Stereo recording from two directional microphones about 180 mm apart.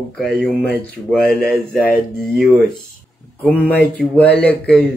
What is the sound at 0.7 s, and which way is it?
Speech, 10° left (ahead or behind).